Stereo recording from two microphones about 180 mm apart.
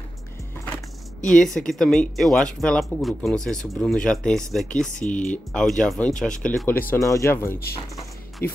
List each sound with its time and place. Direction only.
1.2 s speech: 5° left (ahead or behind)
4.9 s speech: 45° left (ahead or behind)
5.3 s speech: 5° left (ahead or behind)